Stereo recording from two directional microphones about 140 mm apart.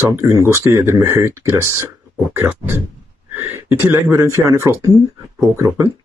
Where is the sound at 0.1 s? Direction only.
20° right (ahead or behind).